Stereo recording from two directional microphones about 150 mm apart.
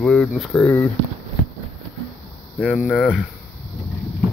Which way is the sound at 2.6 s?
Centre (ahead or behind).